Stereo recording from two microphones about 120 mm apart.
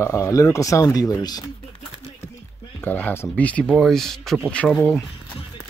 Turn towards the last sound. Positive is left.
turn(degrees=0)  # may be behind; listen again after turning